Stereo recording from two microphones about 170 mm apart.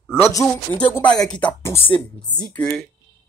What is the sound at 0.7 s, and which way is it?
Speech, 5° left (ahead or behind).